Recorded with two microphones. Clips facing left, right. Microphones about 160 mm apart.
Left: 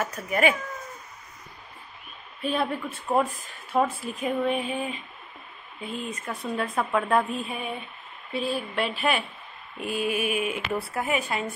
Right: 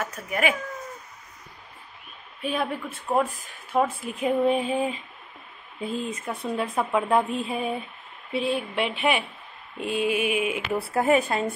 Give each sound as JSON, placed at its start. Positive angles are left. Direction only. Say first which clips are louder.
{"t": 0.0, "sound": "speech", "louder": "left 2 dB", "side_deg": 0}
{"t": 2.4, "sound": "speech", "louder": "left 1 dB", "side_deg": -10}
{"t": 4.0, "sound": "a woman's voice", "louder": "right 4 dB", "side_deg": -20}
{"t": 10.9, "sound": "a woman's voice", "louder": "right 11 dB", "side_deg": -35}